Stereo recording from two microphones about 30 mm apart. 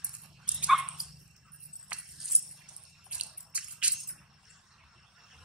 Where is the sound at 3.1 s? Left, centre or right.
Right.